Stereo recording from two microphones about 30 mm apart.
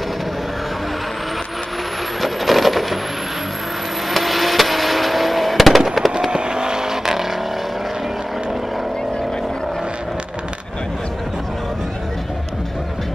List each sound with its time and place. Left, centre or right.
2.2 s coin: centre
4.1 s vehicle: centre
5.9 s fireworks: centre
6.3 s vehicle: right